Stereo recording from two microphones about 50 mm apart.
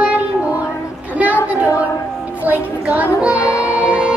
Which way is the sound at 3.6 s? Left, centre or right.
Right.